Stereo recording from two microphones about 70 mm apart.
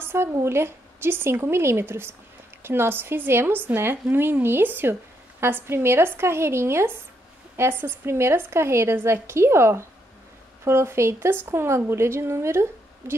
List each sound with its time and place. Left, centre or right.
0.0 s speech: right